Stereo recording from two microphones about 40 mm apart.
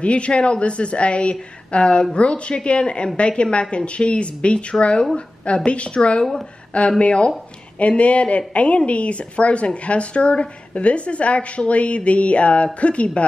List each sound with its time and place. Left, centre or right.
0.0 s a woman's voice: left